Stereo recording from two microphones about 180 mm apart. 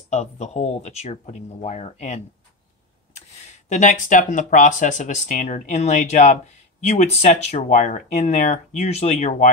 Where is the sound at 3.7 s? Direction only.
45° left (ahead or behind).